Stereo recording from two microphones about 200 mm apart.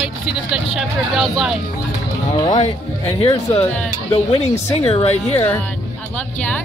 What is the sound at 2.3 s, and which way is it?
Speech, 20° left (ahead or behind).